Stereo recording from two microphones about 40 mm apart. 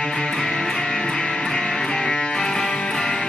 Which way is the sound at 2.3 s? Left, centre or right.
Centre.